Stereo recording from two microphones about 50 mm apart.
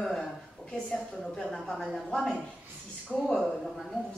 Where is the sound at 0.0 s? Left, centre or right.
Centre.